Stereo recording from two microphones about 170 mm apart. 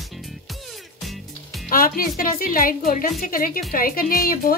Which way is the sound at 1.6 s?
55° left (ahead or behind).